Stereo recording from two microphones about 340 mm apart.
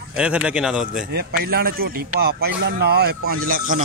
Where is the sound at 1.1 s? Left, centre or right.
Right.